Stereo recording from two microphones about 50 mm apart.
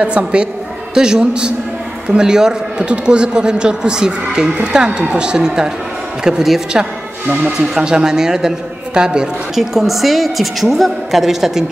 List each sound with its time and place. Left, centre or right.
0.0 s a man's voice: right
9.6 s a woman's voice: centre